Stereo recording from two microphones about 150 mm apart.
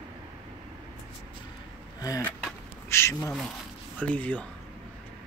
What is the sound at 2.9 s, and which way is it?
Insect, 20° left (ahead or behind).